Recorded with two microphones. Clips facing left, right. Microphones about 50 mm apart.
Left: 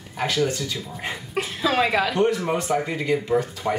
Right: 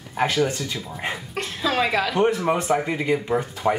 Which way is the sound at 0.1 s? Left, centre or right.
Centre.